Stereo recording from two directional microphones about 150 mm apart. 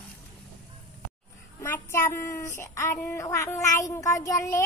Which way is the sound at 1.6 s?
15° left (ahead or behind).